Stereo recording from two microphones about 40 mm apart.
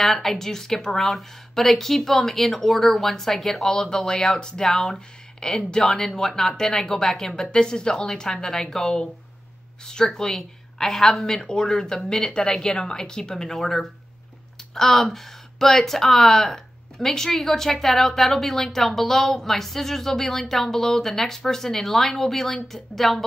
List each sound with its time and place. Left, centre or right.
0.0 s speech: centre
4.6 s a woman's voice: centre